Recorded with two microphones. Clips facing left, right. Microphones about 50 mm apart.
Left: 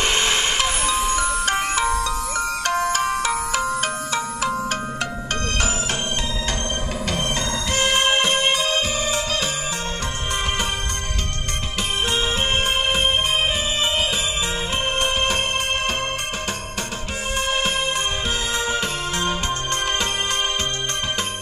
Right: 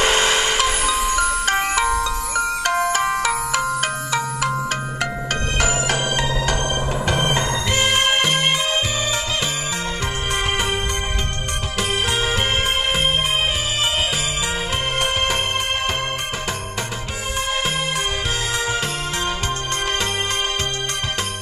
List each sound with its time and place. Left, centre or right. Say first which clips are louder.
1.1 s music: right 2 dB; right
7.1 s music: right 4 dB; right